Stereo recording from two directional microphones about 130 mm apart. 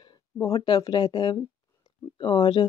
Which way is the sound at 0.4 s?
30° left (ahead or behind).